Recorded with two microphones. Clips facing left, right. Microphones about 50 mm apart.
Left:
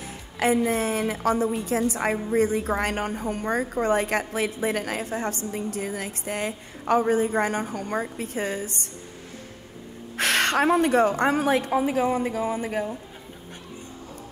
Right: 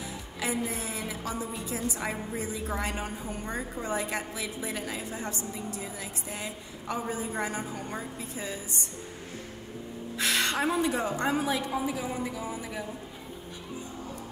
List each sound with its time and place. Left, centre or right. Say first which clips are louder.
0.4 s a woman's voice: left 10 dB; left
10.1 s a woman's voice: left 6 dB; left